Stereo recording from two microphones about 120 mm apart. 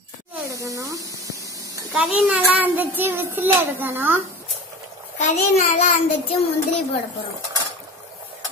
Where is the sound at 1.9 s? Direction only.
5° right (ahead or behind).